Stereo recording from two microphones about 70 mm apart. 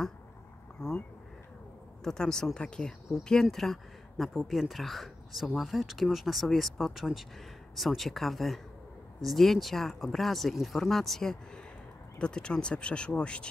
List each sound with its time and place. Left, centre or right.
2.0 s speech: centre